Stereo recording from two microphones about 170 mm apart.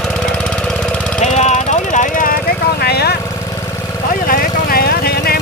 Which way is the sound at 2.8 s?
70° left (ahead or behind).